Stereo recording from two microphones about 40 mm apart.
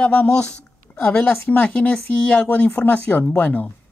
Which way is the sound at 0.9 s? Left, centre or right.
Left.